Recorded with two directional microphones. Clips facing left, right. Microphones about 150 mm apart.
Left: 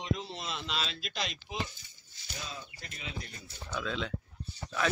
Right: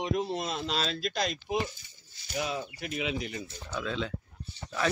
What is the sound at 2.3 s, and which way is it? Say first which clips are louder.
Speech: right 11 dB; 70° right (ahead or behind).